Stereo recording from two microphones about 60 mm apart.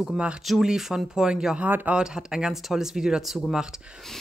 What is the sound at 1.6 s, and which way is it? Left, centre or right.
Speech, right.